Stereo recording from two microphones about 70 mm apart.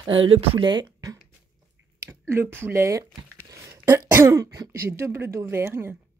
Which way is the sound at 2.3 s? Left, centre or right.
Right.